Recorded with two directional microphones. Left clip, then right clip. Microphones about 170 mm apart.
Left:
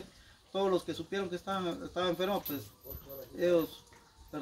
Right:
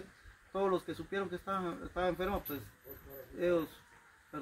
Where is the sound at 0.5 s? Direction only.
20° left (ahead or behind).